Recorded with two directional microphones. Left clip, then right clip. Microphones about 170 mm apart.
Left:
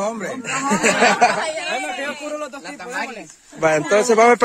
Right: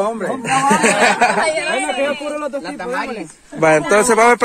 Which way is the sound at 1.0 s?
15° right (ahead or behind).